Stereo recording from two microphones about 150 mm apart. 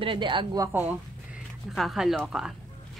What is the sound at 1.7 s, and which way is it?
Speech, centre (ahead or behind).